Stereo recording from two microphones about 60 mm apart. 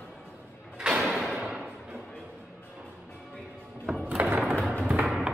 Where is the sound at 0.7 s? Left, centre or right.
Centre.